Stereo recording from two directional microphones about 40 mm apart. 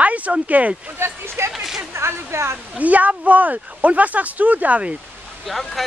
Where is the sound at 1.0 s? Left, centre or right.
Right.